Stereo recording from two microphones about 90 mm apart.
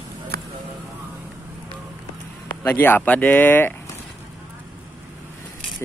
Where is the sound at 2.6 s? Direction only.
20° left (ahead or behind).